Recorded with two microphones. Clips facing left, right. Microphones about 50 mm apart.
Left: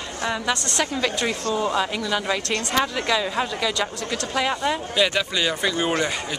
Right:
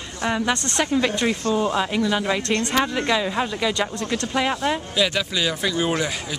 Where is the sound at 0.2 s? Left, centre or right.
Centre.